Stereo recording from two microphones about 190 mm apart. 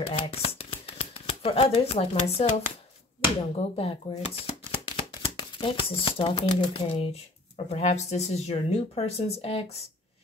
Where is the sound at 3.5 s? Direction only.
30° left (ahead or behind).